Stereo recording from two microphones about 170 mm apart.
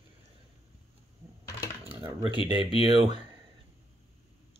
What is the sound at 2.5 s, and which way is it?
Speech, 30° right (ahead or behind).